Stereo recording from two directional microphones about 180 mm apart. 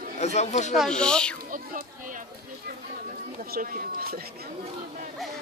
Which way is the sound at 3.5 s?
55° right (ahead or behind).